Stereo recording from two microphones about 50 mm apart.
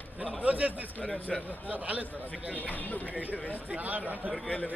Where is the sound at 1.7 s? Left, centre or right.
Right.